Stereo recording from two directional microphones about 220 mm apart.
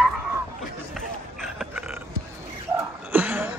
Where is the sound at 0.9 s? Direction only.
Centre (ahead or behind).